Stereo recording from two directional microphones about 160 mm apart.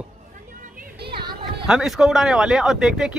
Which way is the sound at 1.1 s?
30° right (ahead or behind).